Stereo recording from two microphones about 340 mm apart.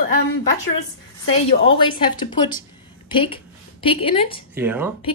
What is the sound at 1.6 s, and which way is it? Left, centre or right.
A woman's voice, centre.